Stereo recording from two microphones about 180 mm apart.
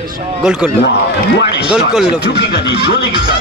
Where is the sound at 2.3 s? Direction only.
70° left (ahead or behind).